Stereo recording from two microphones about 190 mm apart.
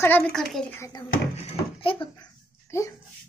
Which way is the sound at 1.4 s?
35° left (ahead or behind).